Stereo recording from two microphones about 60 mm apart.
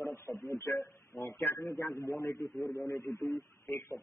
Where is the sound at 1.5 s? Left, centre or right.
Left.